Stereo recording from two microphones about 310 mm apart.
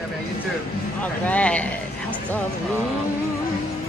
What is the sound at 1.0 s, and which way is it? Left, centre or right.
Speech, centre.